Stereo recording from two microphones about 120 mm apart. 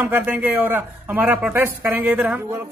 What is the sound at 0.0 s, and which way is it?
A man's voice, 15° right (ahead or behind).